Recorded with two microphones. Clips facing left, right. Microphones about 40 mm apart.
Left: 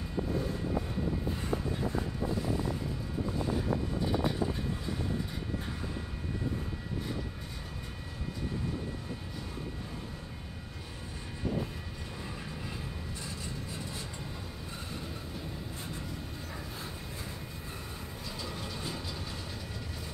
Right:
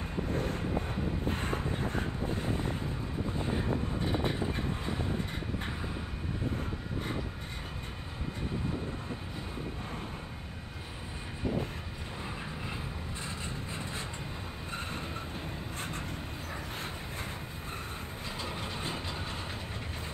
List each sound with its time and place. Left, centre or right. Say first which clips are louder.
0.3 s vehicle: right 1 dB; right
18.4 s train: right 2 dB; right